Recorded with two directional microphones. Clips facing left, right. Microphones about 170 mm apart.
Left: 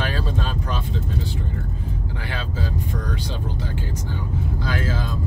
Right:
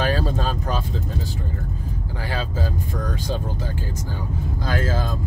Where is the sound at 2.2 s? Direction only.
40° right (ahead or behind).